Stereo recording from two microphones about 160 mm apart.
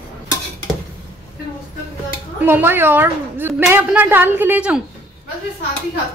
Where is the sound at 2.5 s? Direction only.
15° right (ahead or behind).